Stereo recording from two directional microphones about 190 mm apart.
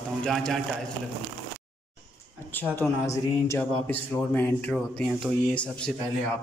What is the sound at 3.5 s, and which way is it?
Speech, 10° left (ahead or behind).